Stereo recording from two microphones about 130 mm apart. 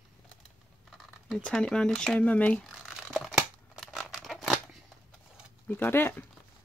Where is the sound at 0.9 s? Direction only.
Centre (ahead or behind).